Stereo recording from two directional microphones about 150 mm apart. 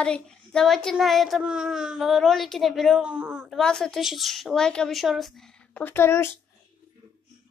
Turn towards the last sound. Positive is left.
turn(degrees=15)  # may be behind; listen again after turning